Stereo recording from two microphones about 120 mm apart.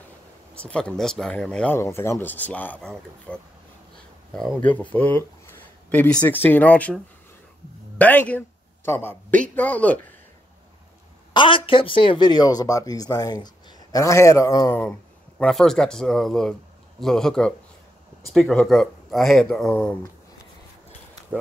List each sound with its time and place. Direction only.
0.7 s a man's voice: 10° left (ahead or behind)
1.8 s a man's voice: 25° left (ahead or behind); by 4.6 s centre (ahead or behind)
4.6 s a man's voice: 15° left (ahead or behind)
8.0 s a man's voice: 15° left (ahead or behind)
11.3 s speech: 45° left (ahead or behind); by 14.8 s 30° left (ahead or behind)
14.8 s speech: 10° left (ahead or behind)